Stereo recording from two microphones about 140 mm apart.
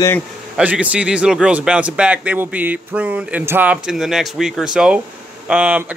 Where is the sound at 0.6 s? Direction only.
10° right (ahead or behind).